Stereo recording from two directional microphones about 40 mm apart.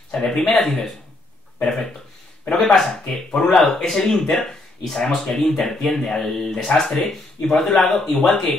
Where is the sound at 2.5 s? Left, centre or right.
Centre.